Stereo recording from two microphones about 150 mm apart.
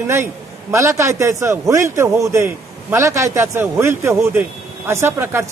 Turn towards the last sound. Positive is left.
turn(degrees=-15)  # may be behind; listen again after turning